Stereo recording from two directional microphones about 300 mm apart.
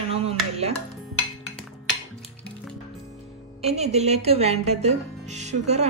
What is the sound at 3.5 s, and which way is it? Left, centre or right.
Speech, right.